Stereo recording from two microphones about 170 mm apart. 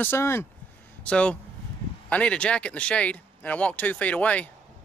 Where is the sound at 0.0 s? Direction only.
15° left (ahead or behind).